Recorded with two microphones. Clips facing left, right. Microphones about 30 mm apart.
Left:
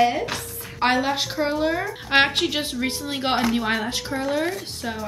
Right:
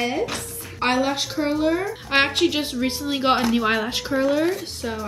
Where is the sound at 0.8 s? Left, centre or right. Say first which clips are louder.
Even; centre.